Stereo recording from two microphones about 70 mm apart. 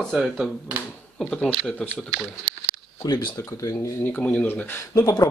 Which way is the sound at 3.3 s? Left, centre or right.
Left.